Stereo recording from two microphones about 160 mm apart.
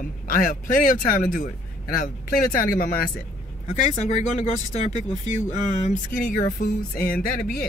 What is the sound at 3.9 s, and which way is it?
Speech, 45° left (ahead or behind).